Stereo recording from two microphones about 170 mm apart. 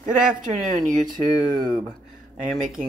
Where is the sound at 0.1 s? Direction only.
5° right (ahead or behind).